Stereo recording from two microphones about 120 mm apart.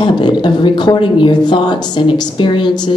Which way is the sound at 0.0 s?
40° left (ahead or behind).